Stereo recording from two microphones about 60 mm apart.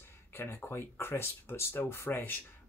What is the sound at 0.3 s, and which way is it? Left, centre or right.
Speech, left.